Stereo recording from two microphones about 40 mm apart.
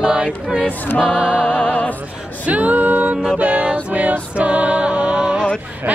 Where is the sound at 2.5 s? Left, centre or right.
Right.